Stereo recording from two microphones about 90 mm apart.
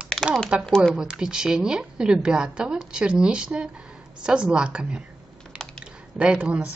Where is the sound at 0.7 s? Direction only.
5° left (ahead or behind).